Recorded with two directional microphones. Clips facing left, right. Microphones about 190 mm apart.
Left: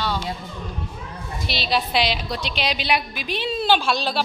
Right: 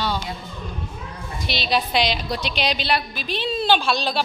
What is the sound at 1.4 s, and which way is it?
A woman's voice, centre (ahead or behind).